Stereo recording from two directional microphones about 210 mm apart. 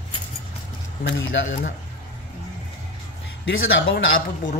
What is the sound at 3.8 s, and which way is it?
Speech, 60° left (ahead or behind).